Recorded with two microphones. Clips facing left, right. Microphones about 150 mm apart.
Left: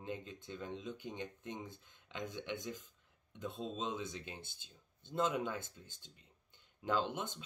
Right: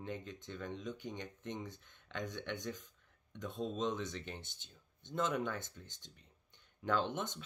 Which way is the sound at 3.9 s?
10° left (ahead or behind).